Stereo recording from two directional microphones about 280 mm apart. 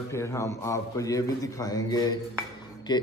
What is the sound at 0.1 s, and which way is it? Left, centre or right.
A man's voice, centre.